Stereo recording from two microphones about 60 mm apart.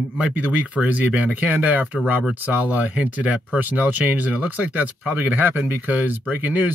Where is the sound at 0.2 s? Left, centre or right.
Right.